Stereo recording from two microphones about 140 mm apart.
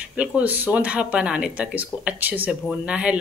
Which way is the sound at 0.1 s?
5° right (ahead or behind).